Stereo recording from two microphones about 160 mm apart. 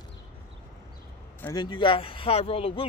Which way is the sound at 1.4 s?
25° left (ahead or behind).